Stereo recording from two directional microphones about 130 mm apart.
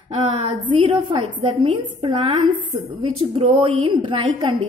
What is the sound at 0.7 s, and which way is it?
A woman's voice, 40° right (ahead or behind).